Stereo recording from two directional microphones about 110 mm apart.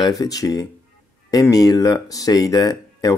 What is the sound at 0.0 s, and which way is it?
Speech, 35° left (ahead or behind).